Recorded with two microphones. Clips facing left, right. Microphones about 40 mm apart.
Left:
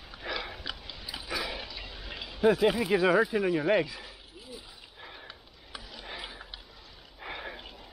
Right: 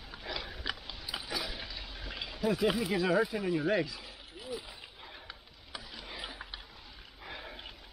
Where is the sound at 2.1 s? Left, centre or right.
Centre.